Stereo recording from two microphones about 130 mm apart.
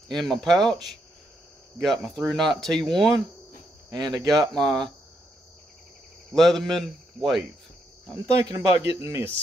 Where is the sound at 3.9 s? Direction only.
30° right (ahead or behind).